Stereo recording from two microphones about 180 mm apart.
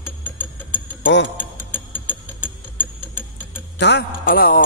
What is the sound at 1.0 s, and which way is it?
Speech, 85° left.